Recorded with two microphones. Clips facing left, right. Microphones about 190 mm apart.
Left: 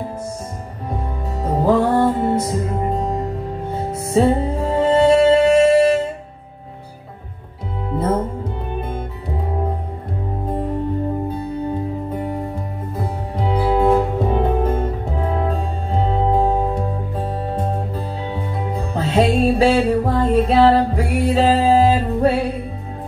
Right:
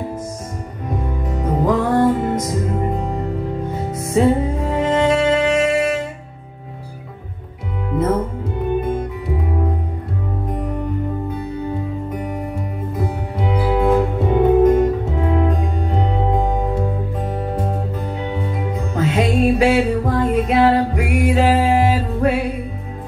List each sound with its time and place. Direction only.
0.8 s music: 30° left (ahead or behind)
3.7 s music: 30° left (ahead or behind)
7.9 s music: 30° left (ahead or behind)
12.1 s music: 30° left (ahead or behind)